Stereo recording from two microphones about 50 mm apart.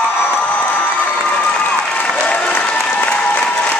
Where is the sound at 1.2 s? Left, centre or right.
Left.